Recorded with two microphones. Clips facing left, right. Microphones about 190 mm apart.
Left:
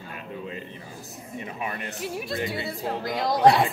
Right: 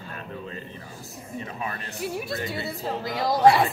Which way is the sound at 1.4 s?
15° left (ahead or behind).